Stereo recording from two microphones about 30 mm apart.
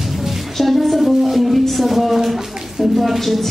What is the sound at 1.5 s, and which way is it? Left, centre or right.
Speech, centre.